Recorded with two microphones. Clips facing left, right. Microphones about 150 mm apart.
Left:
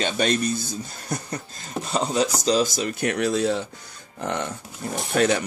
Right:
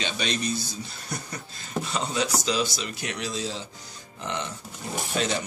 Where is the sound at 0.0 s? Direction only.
50° left (ahead or behind).